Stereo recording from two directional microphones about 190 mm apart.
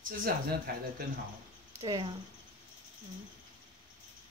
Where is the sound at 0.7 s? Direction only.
55° right (ahead or behind).